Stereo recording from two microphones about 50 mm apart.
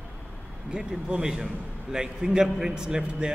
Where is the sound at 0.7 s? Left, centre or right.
Centre.